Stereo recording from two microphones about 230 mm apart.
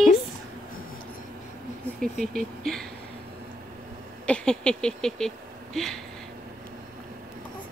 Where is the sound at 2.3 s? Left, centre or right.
Centre.